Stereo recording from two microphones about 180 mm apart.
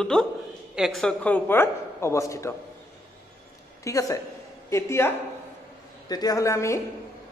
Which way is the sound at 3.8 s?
20° left (ahead or behind).